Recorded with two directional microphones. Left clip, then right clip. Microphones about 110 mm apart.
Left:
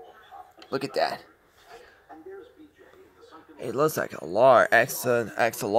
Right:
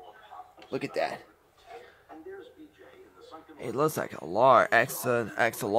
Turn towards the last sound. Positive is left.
turn(degrees=10)  # may be behind; listen again after turning